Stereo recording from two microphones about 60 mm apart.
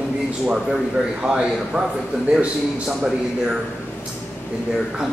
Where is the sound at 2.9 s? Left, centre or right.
Centre.